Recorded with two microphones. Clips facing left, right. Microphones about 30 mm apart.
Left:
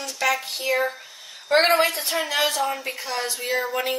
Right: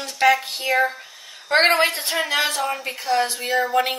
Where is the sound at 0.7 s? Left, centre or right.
Centre.